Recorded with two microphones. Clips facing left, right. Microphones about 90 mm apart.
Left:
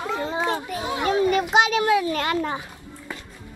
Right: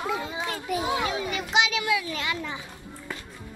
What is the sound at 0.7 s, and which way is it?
Speech, 5° right (ahead or behind).